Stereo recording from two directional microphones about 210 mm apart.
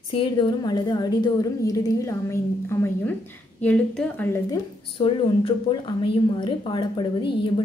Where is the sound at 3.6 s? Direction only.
5° left (ahead or behind).